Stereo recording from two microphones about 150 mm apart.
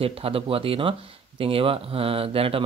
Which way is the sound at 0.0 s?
40° right (ahead or behind).